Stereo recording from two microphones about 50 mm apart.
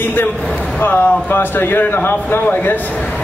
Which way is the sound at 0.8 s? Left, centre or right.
Left.